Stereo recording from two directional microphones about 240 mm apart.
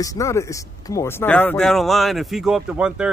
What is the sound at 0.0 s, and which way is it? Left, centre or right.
Speech, centre.